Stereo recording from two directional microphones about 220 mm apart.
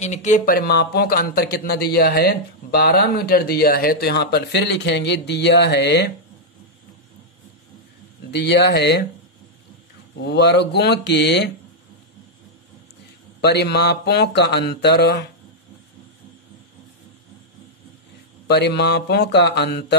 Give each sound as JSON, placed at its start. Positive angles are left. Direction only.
{"t": 0.0, "sound": "speech", "side_deg": 35}
{"t": 8.3, "sound": "speech", "side_deg": 50}
{"t": 10.1, "sound": "speech", "side_deg": 50}
{"t": 13.4, "sound": "speech", "side_deg": 50}
{"t": 18.5, "sound": "speech", "side_deg": 50}